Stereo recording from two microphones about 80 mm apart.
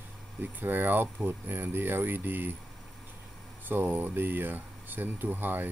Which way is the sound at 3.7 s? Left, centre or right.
Right.